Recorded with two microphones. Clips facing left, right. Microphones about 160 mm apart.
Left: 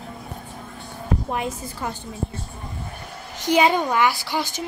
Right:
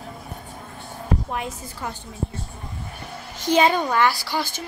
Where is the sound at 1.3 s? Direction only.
20° left (ahead or behind).